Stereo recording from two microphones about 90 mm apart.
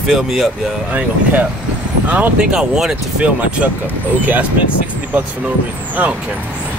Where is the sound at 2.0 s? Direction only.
15° right (ahead or behind).